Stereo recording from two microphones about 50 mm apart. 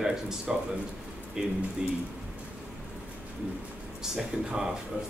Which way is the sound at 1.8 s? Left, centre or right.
Centre.